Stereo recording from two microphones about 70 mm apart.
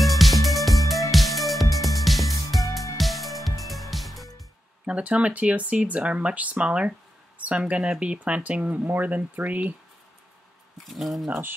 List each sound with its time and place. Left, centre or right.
0.0 s music: centre
4.8 s speech: centre
10.9 s speech: centre